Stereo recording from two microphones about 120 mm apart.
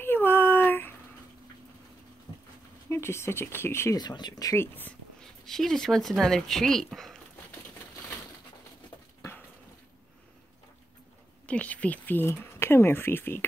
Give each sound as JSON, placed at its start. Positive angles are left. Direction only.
{"t": 0.0, "sound": "a sound", "side_deg": 20}
{"t": 2.9, "sound": "speech", "side_deg": 20}
{"t": 3.9, "sound": "speech", "side_deg": 35}
{"t": 4.7, "sound": "a sound", "side_deg": 15}
{"t": 5.4, "sound": "speech", "side_deg": 0}
{"t": 11.4, "sound": "speech", "side_deg": 10}